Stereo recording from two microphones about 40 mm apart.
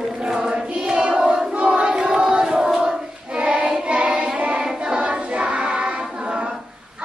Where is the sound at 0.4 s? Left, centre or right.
Centre.